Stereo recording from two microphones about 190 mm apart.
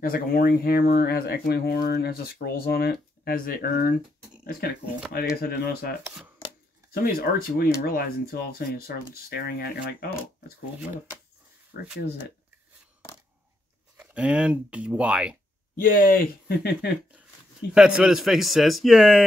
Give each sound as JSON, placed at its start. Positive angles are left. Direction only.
{"t": 0.0, "sound": "speech", "side_deg": 50}
{"t": 5.3, "sound": "speech", "side_deg": 55}
{"t": 6.9, "sound": "speech", "side_deg": 50}
{"t": 13.9, "sound": "a man's voice", "side_deg": -5}
{"t": 15.7, "sound": "speech", "side_deg": 50}
{"t": 17.7, "sound": "a man's voice", "side_deg": -5}